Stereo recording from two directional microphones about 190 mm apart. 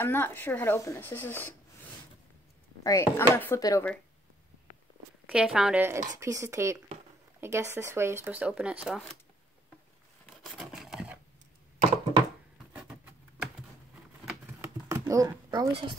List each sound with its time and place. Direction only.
0.0 s speech: 10° left (ahead or behind)
2.8 s speech: 15° left (ahead or behind)
5.2 s speech: 5° right (ahead or behind)
10.4 s a sound: centre (ahead or behind)
12.7 s patter: 5° right (ahead or behind)
14.2 s typing: 15° right (ahead or behind)